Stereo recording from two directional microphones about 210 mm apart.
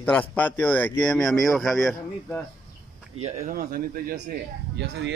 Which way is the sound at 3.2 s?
40° right (ahead or behind).